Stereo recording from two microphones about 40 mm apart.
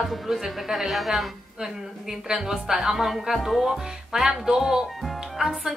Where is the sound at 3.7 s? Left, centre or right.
Centre.